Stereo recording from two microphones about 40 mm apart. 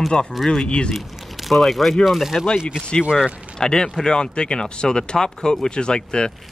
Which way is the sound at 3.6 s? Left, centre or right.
Centre.